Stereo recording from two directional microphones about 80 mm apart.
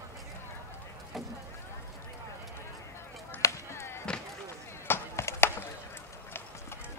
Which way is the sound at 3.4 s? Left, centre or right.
Left.